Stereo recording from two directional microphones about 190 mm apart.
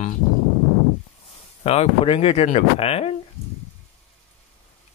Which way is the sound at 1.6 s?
30° left (ahead or behind).